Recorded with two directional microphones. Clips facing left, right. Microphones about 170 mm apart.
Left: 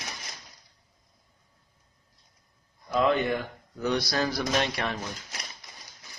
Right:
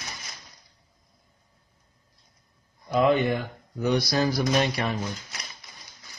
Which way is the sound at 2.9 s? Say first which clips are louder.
Right 3 dB; 20° right (ahead or behind).